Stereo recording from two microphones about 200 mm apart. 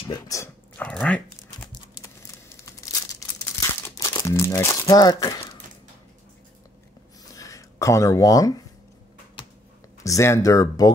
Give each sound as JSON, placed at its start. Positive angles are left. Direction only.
{"t": 0.1, "sound": "dog", "side_deg": 15}
{"t": 2.6, "sound": "crumpling", "side_deg": 15}
{"t": 7.3, "sound": "a sound", "side_deg": 15}
{"t": 10.0, "sound": "speech", "side_deg": 15}